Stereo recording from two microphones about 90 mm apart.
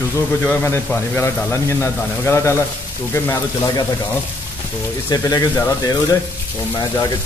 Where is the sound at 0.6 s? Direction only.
30° left (ahead or behind).